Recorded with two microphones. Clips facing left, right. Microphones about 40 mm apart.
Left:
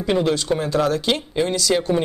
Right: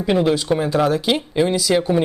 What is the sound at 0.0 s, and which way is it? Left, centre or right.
Speech, centre.